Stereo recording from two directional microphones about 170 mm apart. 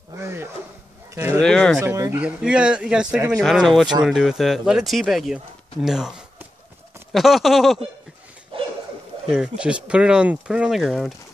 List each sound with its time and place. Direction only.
0.2 s a sound: 15° right (ahead or behind)
1.1 s speech: 15° right (ahead or behind)
1.4 s speech: 5° left (ahead or behind)
1.8 s speech: 20° right (ahead or behind); by 7.8 s centre (ahead or behind)
9.3 s speech: 5° right (ahead or behind)